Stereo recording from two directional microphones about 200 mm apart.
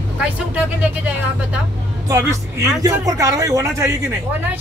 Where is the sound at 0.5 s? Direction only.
5° right (ahead or behind).